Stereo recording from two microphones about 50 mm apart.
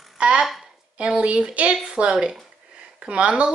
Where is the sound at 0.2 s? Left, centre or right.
Right.